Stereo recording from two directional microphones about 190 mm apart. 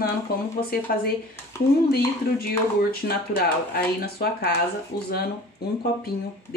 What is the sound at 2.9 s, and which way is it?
Speech, 55° left (ahead or behind).